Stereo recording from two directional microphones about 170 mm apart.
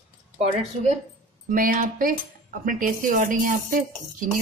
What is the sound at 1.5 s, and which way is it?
Speech, 50° right (ahead or behind).